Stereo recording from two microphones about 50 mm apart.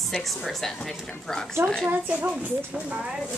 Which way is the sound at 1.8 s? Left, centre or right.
Right.